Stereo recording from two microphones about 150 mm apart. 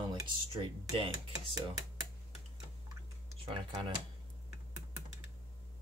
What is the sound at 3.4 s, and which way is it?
Speech, 30° right (ahead or behind).